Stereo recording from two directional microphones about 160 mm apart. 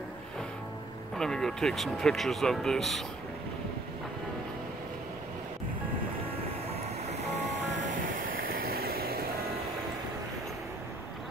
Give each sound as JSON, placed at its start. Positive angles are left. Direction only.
{"t": 1.1, "sound": "speech", "side_deg": 5}
{"t": 7.7, "sound": "vehicle", "side_deg": -55}